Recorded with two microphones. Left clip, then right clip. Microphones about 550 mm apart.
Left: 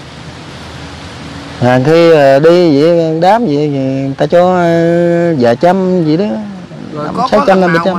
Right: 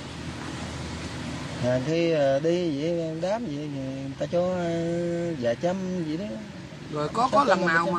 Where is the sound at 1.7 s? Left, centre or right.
Left.